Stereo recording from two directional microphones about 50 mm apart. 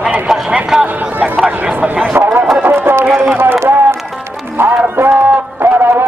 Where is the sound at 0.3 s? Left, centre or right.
Centre.